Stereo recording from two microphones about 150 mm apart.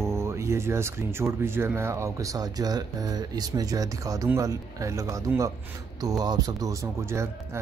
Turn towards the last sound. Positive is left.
turn(degrees=-20)  # may be behind; listen again after turning